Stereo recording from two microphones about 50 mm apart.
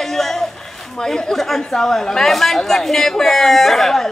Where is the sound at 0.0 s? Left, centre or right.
Centre.